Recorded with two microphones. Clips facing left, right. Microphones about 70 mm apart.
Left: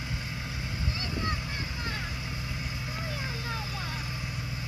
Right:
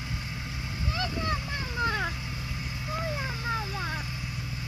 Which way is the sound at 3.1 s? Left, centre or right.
Right.